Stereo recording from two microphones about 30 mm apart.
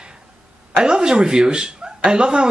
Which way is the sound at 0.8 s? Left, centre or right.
Right.